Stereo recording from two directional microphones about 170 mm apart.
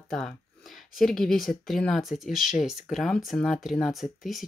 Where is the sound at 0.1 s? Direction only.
Centre (ahead or behind).